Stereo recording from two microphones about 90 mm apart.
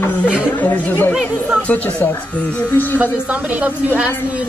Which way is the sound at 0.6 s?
20° left (ahead or behind).